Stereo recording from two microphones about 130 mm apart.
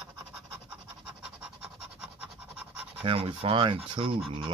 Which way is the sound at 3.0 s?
45° right (ahead or behind).